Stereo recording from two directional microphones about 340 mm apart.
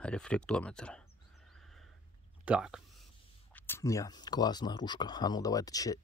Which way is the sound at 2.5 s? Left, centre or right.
Centre.